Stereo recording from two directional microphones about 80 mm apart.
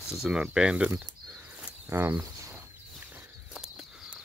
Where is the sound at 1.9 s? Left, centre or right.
Right.